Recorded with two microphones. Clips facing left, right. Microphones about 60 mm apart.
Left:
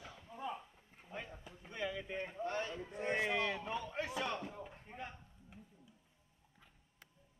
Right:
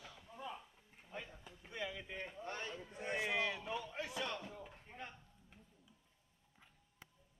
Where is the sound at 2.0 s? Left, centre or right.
Left.